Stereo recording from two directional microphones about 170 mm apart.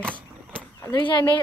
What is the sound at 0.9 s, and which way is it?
Speech, 25° left (ahead or behind).